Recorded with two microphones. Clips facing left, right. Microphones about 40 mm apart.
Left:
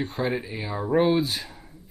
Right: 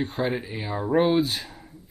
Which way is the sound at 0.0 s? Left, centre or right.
Centre.